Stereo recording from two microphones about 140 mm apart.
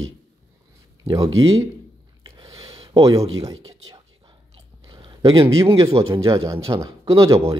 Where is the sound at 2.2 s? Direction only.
30° right (ahead or behind).